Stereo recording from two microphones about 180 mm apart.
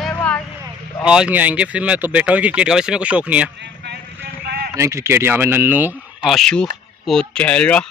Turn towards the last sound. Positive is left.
turn(degrees=5)  # may be behind; listen again after turning